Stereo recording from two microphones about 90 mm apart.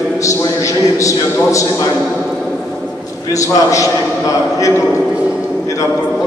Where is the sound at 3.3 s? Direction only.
40° left (ahead or behind).